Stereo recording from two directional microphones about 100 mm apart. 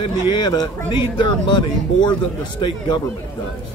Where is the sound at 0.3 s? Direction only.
45° left (ahead or behind).